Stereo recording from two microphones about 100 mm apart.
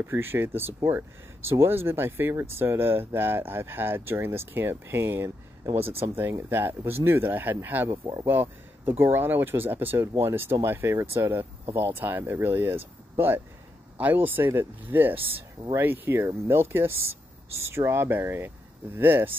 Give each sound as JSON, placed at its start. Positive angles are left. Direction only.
{"t": 0.0, "sound": "speech", "side_deg": -25}
{"t": 13.9, "sound": "speech", "side_deg": -20}